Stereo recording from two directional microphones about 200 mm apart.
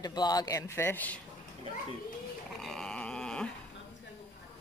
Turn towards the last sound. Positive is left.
turn(degrees=5)  # may be behind; listen again after turning